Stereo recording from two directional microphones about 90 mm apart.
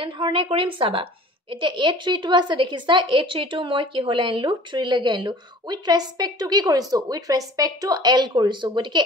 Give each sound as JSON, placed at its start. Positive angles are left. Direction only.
{"t": 0.0, "sound": "a woman's voice", "side_deg": -75}
{"t": 1.5, "sound": "speech", "side_deg": -65}